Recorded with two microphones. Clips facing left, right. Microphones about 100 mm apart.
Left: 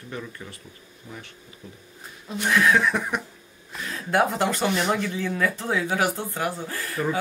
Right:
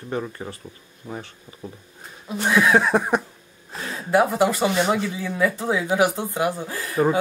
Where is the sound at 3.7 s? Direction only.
30° right (ahead or behind).